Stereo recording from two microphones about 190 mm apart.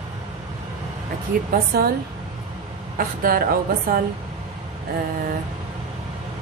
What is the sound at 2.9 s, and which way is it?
A woman's voice, 50° right (ahead or behind).